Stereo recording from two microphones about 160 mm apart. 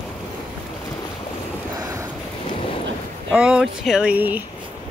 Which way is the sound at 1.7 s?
20° right (ahead or behind).